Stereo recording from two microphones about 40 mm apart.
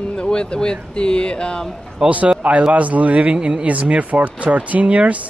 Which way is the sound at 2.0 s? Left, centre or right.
Right.